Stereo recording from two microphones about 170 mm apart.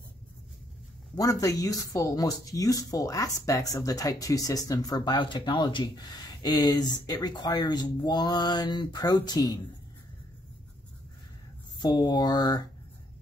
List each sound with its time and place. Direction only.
1.1 s speech: 20° left (ahead or behind)
11.8 s speech: 25° left (ahead or behind)